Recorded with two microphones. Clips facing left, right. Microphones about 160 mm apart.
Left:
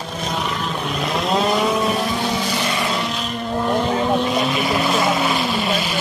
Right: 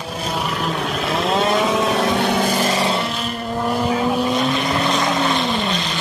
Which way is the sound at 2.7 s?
35° right (ahead or behind).